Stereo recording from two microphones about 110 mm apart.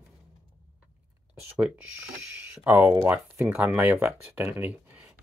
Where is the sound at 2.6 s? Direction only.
15° right (ahead or behind).